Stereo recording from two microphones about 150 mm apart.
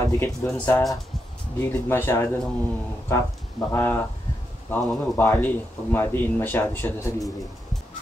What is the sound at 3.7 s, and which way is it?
Speech, 15° left (ahead or behind).